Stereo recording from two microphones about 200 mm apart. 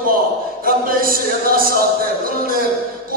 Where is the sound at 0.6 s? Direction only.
45° right (ahead or behind).